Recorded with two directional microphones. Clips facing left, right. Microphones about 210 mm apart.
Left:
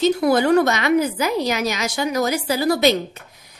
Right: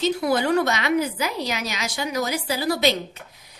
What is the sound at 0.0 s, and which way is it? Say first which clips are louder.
A woman's voice: left 5 dB; 45° left (ahead or behind).